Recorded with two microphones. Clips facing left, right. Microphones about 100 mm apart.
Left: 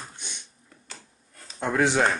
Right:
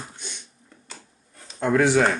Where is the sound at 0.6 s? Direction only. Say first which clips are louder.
Right 2 dB; centre (ahead or behind).